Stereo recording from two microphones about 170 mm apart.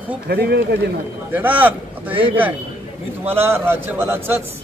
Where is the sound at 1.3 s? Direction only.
10° right (ahead or behind).